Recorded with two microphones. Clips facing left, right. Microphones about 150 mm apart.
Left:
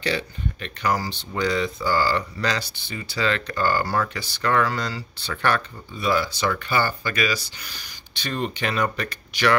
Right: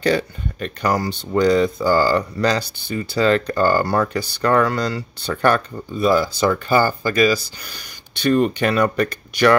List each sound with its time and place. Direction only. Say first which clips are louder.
0.0 s speech: right 7 dB; 45° right (ahead or behind)
8.2 s speech: right 10 dB; 50° right (ahead or behind)